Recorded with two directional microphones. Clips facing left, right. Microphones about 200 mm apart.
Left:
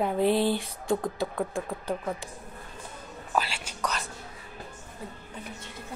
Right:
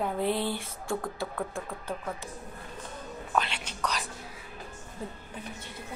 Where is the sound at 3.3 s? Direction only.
10° left (ahead or behind).